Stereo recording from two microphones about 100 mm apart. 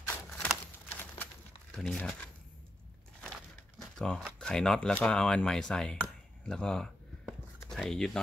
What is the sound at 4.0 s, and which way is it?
Speech, 5° left (ahead or behind).